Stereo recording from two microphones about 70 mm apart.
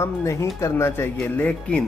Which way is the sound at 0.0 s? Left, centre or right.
Left.